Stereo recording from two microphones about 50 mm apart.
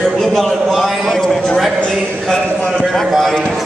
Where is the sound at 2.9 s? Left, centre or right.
Centre.